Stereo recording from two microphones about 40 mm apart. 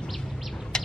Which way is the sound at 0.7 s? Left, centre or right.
Centre.